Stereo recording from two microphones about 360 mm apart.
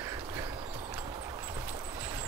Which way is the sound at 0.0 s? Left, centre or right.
Centre.